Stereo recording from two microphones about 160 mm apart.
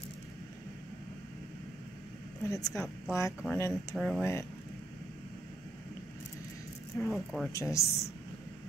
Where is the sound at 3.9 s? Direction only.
Centre (ahead or behind).